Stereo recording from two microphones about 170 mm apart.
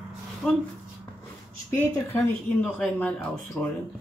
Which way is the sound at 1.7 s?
15° left (ahead or behind).